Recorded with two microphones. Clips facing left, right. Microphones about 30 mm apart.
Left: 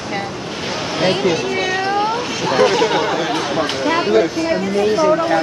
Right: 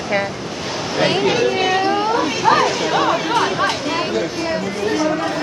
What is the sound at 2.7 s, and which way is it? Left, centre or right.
Speech, left.